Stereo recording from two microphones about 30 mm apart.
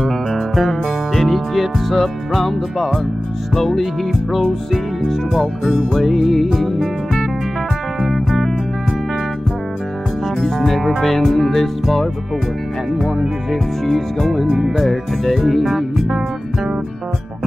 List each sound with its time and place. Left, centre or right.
0.0 s music: centre
5.3 s music: centre
8.1 s music: centre
10.4 s music: centre
13.5 s music: centre